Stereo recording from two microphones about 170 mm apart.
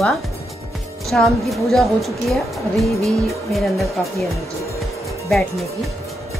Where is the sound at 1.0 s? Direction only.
Centre (ahead or behind).